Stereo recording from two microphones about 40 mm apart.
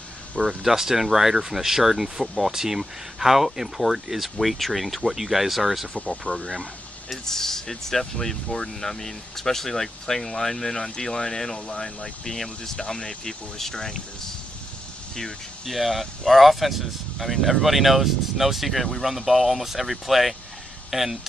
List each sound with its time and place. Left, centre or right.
0.4 s speech: centre
6.3 s speech: left
7.2 s speech: centre
15.6 s speech: centre